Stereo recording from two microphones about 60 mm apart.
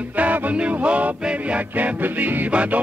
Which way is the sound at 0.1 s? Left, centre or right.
Right.